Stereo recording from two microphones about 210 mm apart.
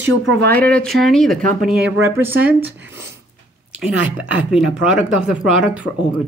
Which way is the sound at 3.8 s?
5° right (ahead or behind).